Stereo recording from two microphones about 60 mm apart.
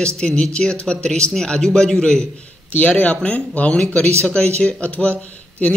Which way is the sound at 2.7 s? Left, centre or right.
Left.